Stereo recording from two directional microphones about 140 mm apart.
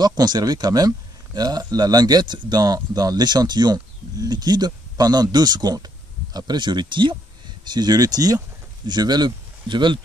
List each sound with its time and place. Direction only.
0.0 s speech: 30° right (ahead or behind)